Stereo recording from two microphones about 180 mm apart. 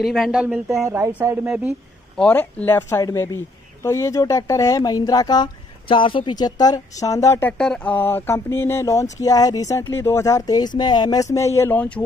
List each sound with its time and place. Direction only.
0.0 s speech: centre (ahead or behind)
0.8 s speech: 15° right (ahead or behind)
2.1 s speech: 10° left (ahead or behind)